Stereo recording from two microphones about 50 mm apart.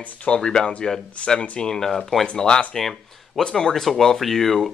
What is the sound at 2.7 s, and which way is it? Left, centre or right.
A woman's voice, centre.